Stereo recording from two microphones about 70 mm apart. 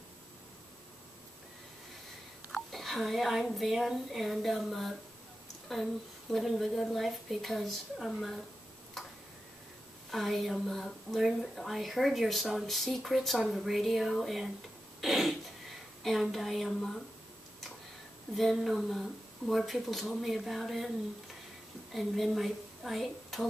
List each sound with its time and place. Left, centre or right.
2.5 s speech: centre
6.3 s speech: centre
10.1 s speech: centre
15.0 s throat clearing: centre
16.0 s speech: centre
18.3 s speech: centre
21.9 s a woman's voice: centre